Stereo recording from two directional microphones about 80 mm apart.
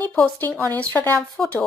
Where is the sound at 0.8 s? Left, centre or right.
Left.